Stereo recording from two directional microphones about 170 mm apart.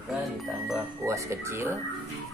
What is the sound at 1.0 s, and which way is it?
Speech, 15° right (ahead or behind).